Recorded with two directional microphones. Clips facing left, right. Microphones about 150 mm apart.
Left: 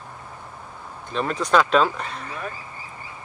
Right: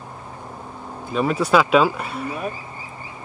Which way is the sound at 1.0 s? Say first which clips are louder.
Right 5 dB; 5° right (ahead or behind).